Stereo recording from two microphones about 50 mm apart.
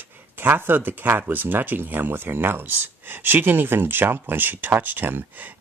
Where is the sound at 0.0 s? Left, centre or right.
Right.